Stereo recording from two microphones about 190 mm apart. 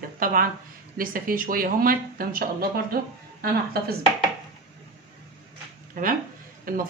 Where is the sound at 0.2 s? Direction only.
50° right (ahead or behind).